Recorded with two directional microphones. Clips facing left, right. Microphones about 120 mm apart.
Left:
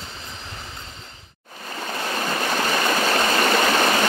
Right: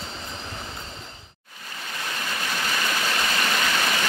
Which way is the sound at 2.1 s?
45° left (ahead or behind).